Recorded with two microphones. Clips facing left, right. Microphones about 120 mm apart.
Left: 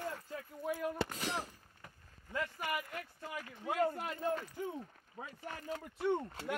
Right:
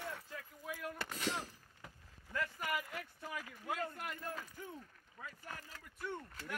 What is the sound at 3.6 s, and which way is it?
Speech, 55° left (ahead or behind).